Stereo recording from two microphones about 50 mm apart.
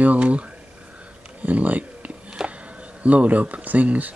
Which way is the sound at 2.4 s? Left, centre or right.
Centre.